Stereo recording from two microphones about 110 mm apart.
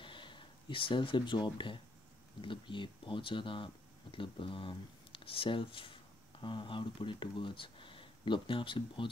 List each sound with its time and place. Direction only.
0.0 s speech: 50° left (ahead or behind)